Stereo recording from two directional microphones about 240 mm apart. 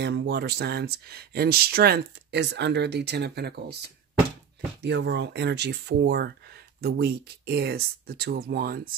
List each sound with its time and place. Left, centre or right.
0.0 s speech: right
4.8 s speech: right